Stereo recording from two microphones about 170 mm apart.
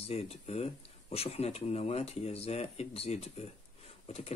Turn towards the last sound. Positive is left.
turn(degrees=35)  # may be behind; listen again after turning